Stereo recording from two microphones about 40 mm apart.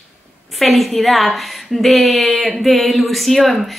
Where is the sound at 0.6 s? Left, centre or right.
Centre.